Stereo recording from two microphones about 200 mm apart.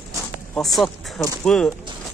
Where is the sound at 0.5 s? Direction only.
Centre (ahead or behind).